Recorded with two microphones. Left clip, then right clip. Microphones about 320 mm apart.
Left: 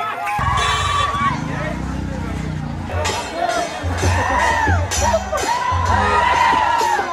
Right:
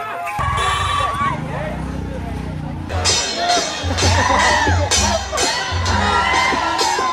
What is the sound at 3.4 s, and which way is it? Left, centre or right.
Music, right.